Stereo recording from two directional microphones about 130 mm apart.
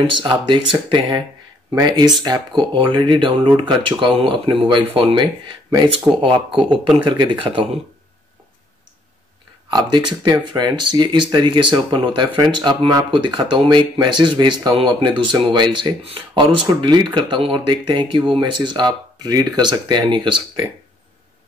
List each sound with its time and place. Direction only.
0.0 s speech: 40° right (ahead or behind)
6.7 s speech: 5° right (ahead or behind)
7.2 s speech: 40° right (ahead or behind)
9.7 s speech: 35° right (ahead or behind)